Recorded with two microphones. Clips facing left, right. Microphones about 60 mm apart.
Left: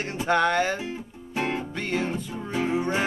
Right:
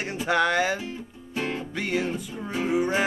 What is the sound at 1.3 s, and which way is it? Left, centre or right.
Music, left.